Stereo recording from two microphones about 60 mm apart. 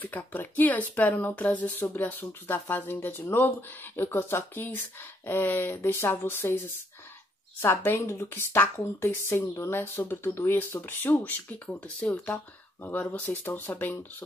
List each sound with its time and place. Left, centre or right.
0.0 s speech: left
8.0 s speech: left
10.5 s speech: left
11.6 s speech: centre
13.2 s speech: left